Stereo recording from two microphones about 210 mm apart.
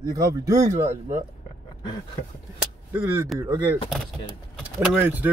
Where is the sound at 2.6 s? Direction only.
10° right (ahead or behind).